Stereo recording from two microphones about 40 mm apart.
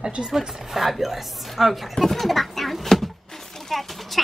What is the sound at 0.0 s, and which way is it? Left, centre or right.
Speech, right.